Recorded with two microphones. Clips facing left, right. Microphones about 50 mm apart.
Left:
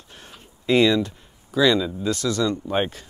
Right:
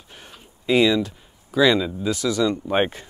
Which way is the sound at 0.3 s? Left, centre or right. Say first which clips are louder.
Even; centre.